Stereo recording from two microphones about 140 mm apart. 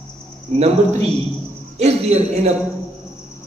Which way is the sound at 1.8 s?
50° right (ahead or behind).